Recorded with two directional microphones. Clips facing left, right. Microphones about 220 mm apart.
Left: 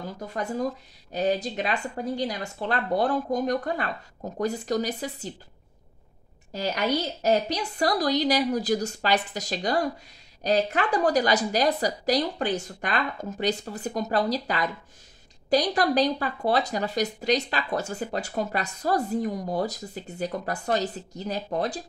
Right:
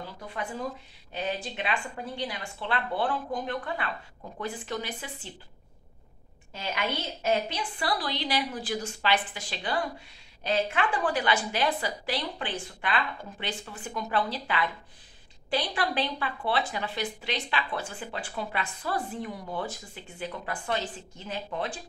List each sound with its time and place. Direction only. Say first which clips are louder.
0.0 s speech: left 5 dB; 40° left (ahead or behind)
6.5 s speech: left 6 dB; 40° left (ahead or behind)